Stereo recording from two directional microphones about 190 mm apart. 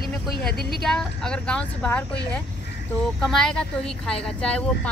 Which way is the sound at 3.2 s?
5° left (ahead or behind).